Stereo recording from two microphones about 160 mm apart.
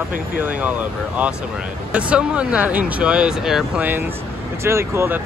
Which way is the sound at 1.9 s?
5° right (ahead or behind).